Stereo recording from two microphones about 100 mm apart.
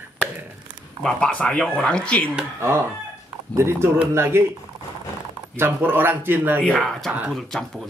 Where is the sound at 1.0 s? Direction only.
10° left (ahead or behind).